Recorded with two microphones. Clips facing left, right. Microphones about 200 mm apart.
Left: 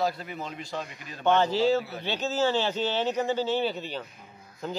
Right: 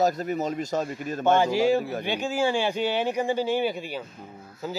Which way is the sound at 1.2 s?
10° right (ahead or behind).